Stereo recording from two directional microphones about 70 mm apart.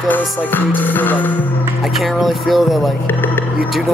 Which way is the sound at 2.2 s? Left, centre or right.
Centre.